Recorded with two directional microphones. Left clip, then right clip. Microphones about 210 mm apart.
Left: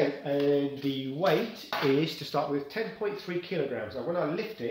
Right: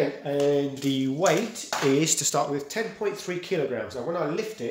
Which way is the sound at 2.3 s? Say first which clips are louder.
Right 4 dB; 50° right (ahead or behind).